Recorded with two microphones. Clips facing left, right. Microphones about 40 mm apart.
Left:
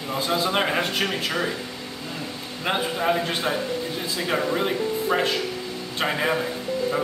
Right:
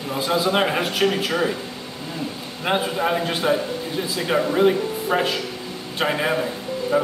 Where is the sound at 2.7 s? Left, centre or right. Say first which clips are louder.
Right 2 dB; centre.